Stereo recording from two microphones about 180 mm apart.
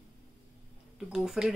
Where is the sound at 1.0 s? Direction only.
Centre (ahead or behind).